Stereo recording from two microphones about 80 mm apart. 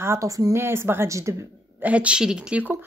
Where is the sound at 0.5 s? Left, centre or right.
Right.